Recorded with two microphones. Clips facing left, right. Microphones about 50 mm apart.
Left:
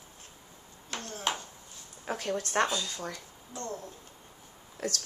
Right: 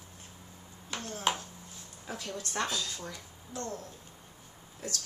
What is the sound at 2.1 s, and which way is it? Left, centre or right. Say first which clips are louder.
Speech: left 7 dB; left.